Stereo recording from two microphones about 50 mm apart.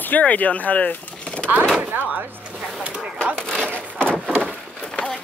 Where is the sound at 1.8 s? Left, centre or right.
Right.